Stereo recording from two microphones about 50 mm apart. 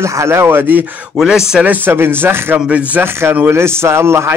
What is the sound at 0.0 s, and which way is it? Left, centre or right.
Speech, right.